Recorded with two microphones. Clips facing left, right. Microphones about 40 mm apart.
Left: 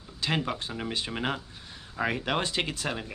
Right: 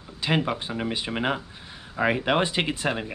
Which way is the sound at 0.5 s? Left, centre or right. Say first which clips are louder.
Right 5 dB; centre.